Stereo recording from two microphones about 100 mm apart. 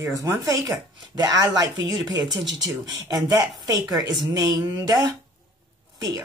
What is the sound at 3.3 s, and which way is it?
Speech, 40° right (ahead or behind).